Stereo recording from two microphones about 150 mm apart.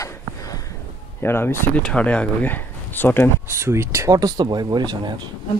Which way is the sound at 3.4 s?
15° right (ahead or behind).